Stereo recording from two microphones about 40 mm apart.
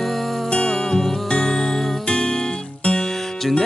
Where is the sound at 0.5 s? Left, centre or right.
Left.